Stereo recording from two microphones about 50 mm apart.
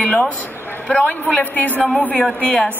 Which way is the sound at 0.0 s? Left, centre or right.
Left.